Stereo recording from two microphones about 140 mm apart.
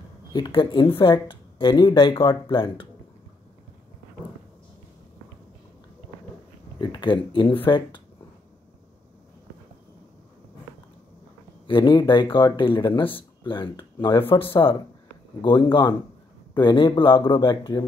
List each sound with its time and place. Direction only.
0.3 s speech: 35° left (ahead or behind)
6.8 s speech: 30° left (ahead or behind)
11.6 s speech: 35° left (ahead or behind)